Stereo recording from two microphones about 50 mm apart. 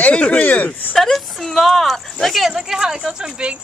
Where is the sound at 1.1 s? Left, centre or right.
Centre.